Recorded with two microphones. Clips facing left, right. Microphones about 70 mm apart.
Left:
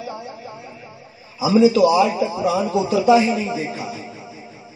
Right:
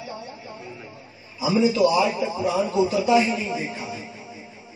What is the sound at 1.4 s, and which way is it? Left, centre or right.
A man's voice, left.